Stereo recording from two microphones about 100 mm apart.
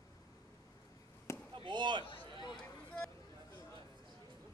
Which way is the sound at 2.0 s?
55° left (ahead or behind).